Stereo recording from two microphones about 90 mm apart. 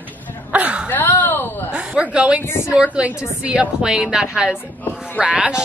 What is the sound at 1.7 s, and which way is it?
Speech, 10° right (ahead or behind).